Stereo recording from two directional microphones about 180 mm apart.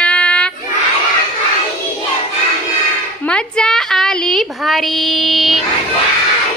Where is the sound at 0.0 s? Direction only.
5° left (ahead or behind).